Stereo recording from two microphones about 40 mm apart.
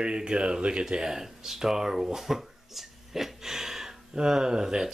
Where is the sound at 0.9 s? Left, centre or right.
Centre.